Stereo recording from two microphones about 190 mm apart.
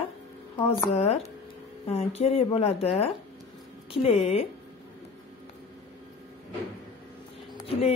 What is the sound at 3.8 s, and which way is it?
Speech, 30° left (ahead or behind).